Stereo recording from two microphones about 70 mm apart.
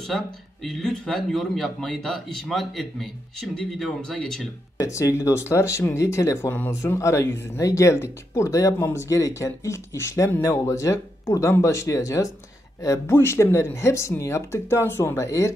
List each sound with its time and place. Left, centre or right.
0.1 s a man's voice: centre
4.7 s speech: left
13.0 s speech: left